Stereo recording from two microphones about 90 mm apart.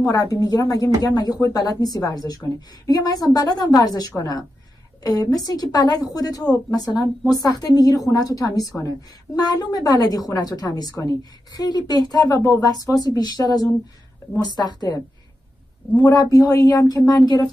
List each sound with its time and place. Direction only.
0.0 s a woman's voice: 45° left (ahead or behind)
16.0 s a woman's voice: 45° left (ahead or behind)